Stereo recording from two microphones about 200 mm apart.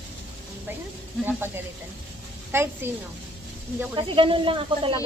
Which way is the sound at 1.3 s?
10° right (ahead or behind).